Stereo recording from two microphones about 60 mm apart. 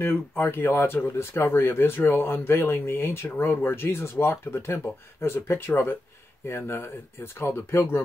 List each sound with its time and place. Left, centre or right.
0.0 s speech: left